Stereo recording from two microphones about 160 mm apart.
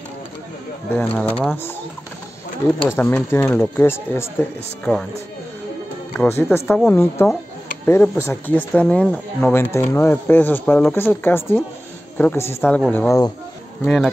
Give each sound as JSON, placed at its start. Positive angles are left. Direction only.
{"t": 0.9, "sound": "speech", "side_deg": 10}
{"t": 2.9, "sound": "speech", "side_deg": 10}
{"t": 6.1, "sound": "speech", "side_deg": 15}
{"t": 9.5, "sound": "speech", "side_deg": 15}